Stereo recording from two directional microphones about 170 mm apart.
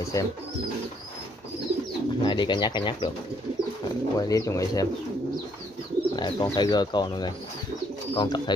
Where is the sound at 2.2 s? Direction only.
25° left (ahead or behind).